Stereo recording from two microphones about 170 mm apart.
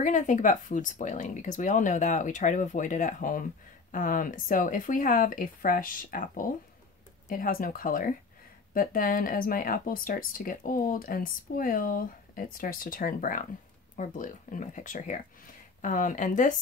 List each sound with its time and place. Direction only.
0.0 s speech: 45° left (ahead or behind)